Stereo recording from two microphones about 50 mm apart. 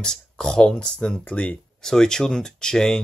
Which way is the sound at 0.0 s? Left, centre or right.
Centre.